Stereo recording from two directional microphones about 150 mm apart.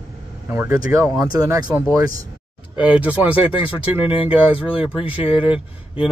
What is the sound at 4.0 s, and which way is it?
Speech, 35° left (ahead or behind).